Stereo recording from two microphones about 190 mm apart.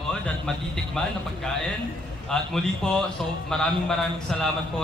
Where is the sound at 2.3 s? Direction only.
5° left (ahead or behind).